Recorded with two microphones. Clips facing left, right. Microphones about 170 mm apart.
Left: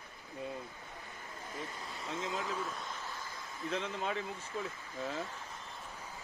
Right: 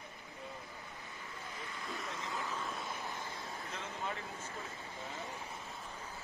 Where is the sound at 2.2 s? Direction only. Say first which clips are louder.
Left 4 dB; 20° left (ahead or behind).